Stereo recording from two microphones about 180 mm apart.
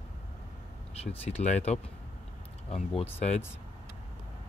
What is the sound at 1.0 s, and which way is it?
Speech, 40° left (ahead or behind).